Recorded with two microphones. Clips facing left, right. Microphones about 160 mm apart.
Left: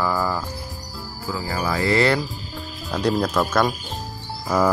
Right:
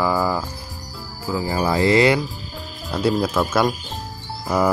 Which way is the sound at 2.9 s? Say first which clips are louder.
Right 1 dB; 5° right (ahead or behind).